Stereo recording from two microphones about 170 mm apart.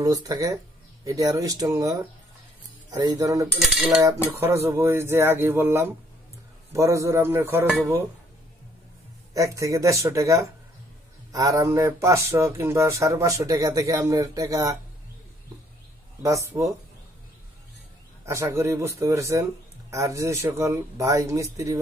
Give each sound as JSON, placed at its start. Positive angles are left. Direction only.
{"t": 0.0, "sound": "speech", "side_deg": -20}
{"t": 3.5, "sound": "cutlery", "side_deg": 0}
{"t": 4.3, "sound": "speech", "side_deg": -15}
{"t": 9.3, "sound": "speech", "side_deg": -20}
{"t": 16.2, "sound": "speech", "side_deg": -20}
{"t": 18.2, "sound": "speech", "side_deg": -15}